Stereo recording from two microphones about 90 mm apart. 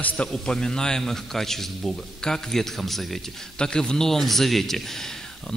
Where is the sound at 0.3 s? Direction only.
10° left (ahead or behind).